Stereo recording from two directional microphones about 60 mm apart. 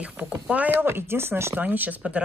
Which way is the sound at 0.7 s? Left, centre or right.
Right.